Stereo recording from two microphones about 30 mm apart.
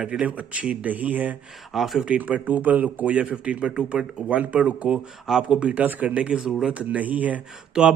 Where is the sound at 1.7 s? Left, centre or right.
Centre.